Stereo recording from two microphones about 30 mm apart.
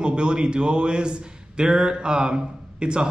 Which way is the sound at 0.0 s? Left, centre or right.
Right.